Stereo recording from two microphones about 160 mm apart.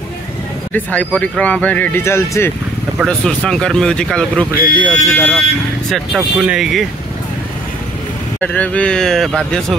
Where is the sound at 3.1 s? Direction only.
5° left (ahead or behind).